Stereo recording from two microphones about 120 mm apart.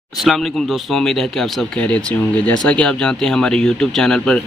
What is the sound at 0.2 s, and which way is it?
Speech, centre (ahead or behind).